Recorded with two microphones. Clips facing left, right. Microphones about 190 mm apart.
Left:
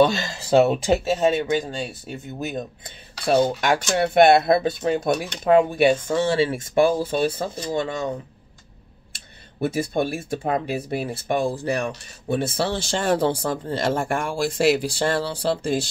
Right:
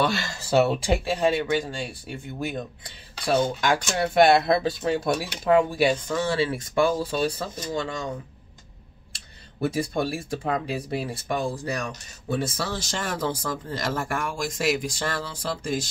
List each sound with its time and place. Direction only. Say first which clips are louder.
0.0 s speech: left 7 dB; 20° left (ahead or behind)
9.6 s speech: left 3 dB; 25° left (ahead or behind)